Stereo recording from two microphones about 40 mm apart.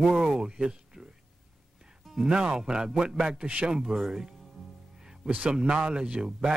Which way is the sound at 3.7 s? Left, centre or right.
Centre.